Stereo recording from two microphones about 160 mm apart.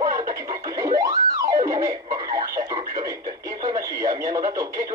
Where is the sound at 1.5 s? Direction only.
20° right (ahead or behind).